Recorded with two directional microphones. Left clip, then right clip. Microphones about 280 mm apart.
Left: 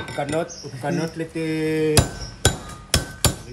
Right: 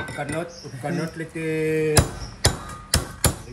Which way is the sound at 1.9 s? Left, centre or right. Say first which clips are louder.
Left 1 dB; centre.